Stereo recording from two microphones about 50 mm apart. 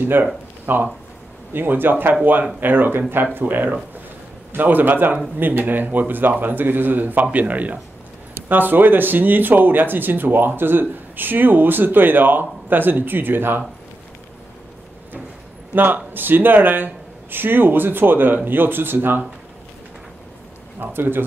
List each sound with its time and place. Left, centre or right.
0.0 s speech: right
15.7 s speech: right
20.8 s speech: right